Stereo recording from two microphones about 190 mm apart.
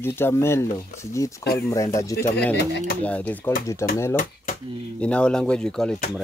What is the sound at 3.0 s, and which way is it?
Speech, 10° left (ahead or behind).